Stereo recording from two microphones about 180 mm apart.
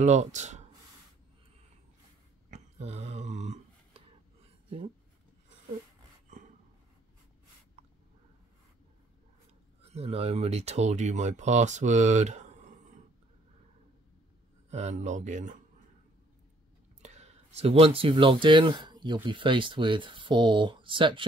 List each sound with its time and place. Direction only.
0.0 s speech: 40° right (ahead or behind)
2.5 s a sound: 35° right (ahead or behind)
4.6 s speech: 35° right (ahead or behind)
9.8 s speech: 35° right (ahead or behind)
14.7 s speech: 40° right (ahead or behind)
17.0 s speech: 40° right (ahead or behind)